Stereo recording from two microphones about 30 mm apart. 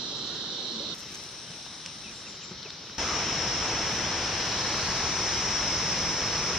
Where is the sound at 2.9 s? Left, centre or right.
Centre.